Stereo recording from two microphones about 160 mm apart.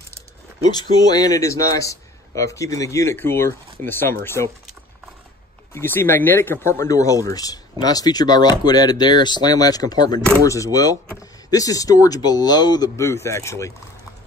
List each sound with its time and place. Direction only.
0.7 s a man's voice: 25° left (ahead or behind)
5.7 s a man's voice: 15° left (ahead or behind)